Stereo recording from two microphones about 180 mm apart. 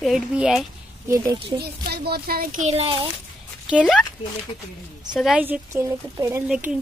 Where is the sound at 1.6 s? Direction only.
60° right (ahead or behind); by 3.0 s 30° right (ahead or behind).